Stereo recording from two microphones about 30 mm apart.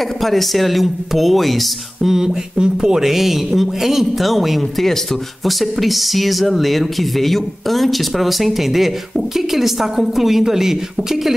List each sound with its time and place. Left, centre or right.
0.2 s speech: centre
2.0 s a sound: centre
3.0 s speech: centre